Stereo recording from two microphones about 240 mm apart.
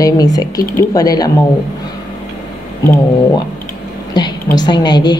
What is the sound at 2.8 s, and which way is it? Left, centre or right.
A woman's voice, centre.